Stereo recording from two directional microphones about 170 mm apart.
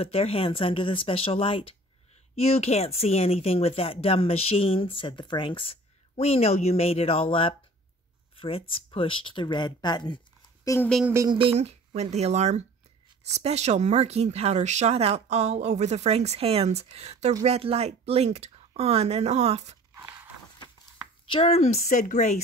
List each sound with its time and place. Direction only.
0.0 s speech: 35° left (ahead or behind); by 10.9 s 20° left (ahead or behind)
11.2 s speech: 30° right (ahead or behind)
19.9 s a sound: 15° right (ahead or behind)
21.3 s speech: 35° left (ahead or behind)